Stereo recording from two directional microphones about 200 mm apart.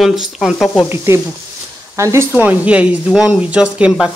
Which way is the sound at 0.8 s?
10° right (ahead or behind).